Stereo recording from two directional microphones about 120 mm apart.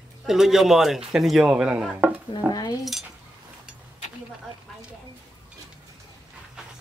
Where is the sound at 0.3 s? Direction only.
5° right (ahead or behind).